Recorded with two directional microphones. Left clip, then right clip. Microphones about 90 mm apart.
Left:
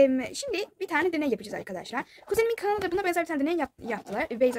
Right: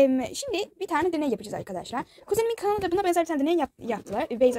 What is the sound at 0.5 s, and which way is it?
Speech, 30° right (ahead or behind).